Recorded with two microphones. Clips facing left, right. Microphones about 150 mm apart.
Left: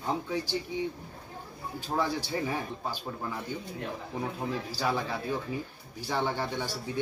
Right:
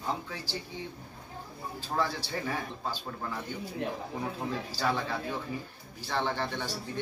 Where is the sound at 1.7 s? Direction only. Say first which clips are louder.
Left 2 dB; 15° left (ahead or behind).